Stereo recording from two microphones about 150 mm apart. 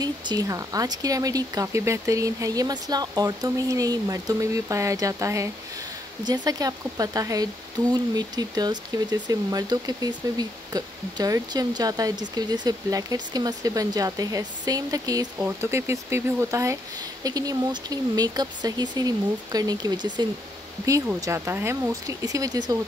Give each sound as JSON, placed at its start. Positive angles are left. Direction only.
{"t": 0.0, "sound": "speech", "side_deg": -25}